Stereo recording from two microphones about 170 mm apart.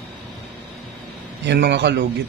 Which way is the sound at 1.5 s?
90° right.